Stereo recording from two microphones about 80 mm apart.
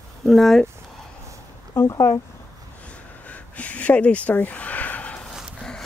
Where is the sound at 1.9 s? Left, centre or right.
Left.